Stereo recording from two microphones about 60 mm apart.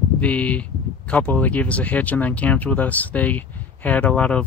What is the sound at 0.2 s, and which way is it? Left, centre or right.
Speech, left.